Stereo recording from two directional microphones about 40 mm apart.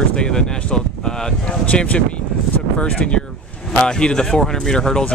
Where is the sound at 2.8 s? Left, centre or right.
Left.